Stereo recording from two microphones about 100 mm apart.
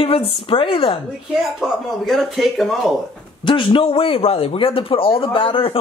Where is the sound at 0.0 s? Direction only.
70° left (ahead or behind).